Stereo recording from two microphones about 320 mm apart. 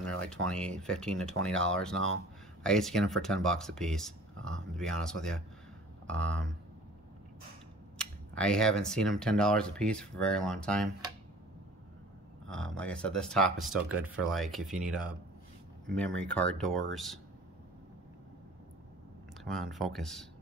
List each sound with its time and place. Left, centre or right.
0.5 s speech: centre
8.0 s speech: centre
12.4 s speech: centre
16.2 s speech: centre
19.4 s speech: centre